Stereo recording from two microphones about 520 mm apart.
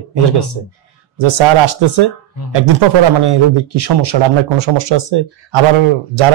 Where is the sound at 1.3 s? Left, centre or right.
Right.